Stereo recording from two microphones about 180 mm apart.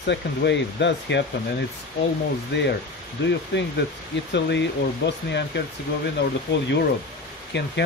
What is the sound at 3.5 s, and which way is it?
Speech, 70° left (ahead or behind).